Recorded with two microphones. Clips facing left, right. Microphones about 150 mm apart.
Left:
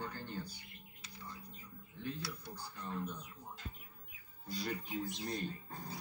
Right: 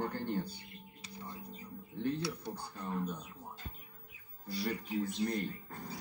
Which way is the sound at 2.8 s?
15° right (ahead or behind).